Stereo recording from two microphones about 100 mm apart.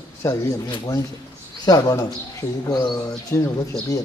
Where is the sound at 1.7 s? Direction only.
40° left (ahead or behind).